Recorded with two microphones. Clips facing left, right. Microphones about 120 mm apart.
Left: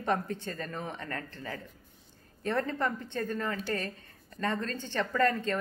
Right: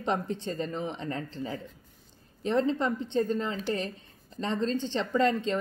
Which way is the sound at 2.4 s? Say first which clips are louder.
Right 4 dB; 20° right (ahead or behind).